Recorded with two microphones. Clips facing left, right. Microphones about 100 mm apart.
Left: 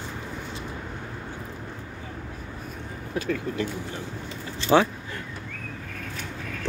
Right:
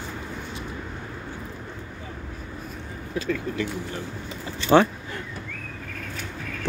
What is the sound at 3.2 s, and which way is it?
Speech, 40° left (ahead or behind).